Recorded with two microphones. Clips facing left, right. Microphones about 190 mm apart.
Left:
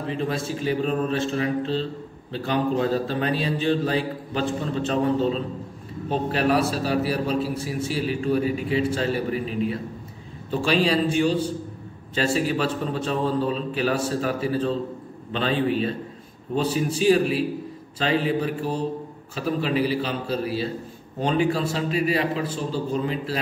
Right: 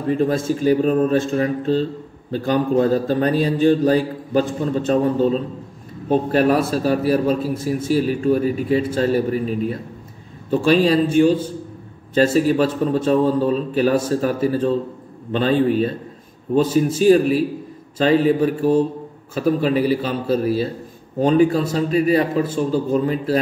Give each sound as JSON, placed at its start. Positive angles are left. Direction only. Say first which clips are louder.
{"t": 0.1, "sound": "a man's voice", "louder": "right 10 dB", "side_deg": -45}